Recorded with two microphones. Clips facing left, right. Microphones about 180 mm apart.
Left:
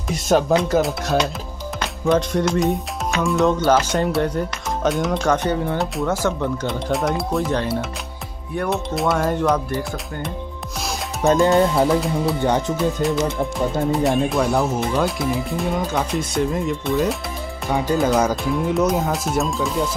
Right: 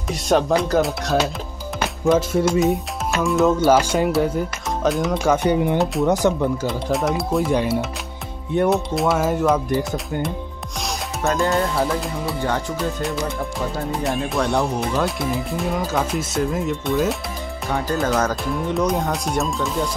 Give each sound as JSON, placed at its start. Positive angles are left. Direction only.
{"t": 0.1, "sound": "speech", "side_deg": 0}
{"t": 6.6, "sound": "speech", "side_deg": 0}
{"t": 8.6, "sound": "speech", "side_deg": 0}
{"t": 11.2, "sound": "speech", "side_deg": 15}
{"t": 11.9, "sound": "speech", "side_deg": 0}
{"t": 12.4, "sound": "music", "side_deg": 20}
{"t": 12.7, "sound": "speech", "side_deg": 0}
{"t": 18.0, "sound": "speech", "side_deg": 10}
{"t": 18.3, "sound": "speech", "side_deg": 0}